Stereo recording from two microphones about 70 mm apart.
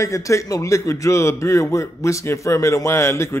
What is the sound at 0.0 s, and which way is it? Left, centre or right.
A man's voice, left.